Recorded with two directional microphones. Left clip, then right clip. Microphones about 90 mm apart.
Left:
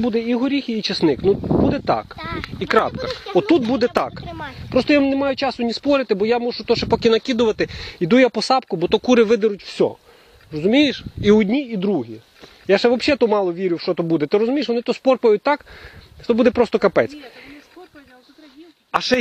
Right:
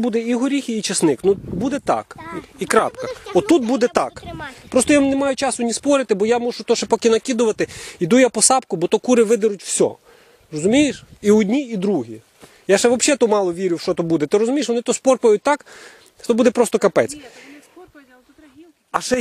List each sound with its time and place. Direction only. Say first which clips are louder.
0.0 s speech: even; 55° right (ahead or behind)
1.0 s speech: even; 50° right (ahead or behind)
2.1 s speech: left 3 dB; centre (ahead or behind)
2.6 s speech: right 1 dB; 45° right (ahead or behind)
8.9 s speech: even; 35° right (ahead or behind)
9.5 s speech: right 1 dB; 60° right (ahead or behind)
10.8 s speech: left 1 dB; 30° right (ahead or behind)
11.3 s speech: even; 55° right (ahead or behind)
18.9 s speech: left 2 dB; 25° right (ahead or behind)